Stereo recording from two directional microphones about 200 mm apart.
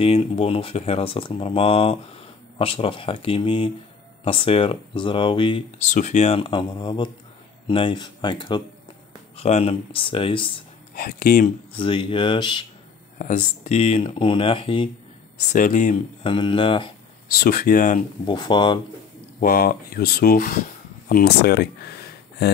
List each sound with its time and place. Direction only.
0.0 s speech: 30° left (ahead or behind)
5.9 s speech: 35° left (ahead or behind); by 8.6 s 20° left (ahead or behind)
9.4 s speech: 30° left (ahead or behind)
11.0 s speech: 50° left (ahead or behind)
11.4 s speech: 25° left (ahead or behind)
13.2 s speech: 35° left (ahead or behind)
15.5 s speech: 40° left (ahead or behind)
16.3 s speech: 25° left (ahead or behind)
17.3 s speech: 45° left (ahead or behind)
18.2 s speech: 20° left (ahead or behind)
19.4 s speech: 45° left (ahead or behind)
21.1 s speech: 55° left (ahead or behind)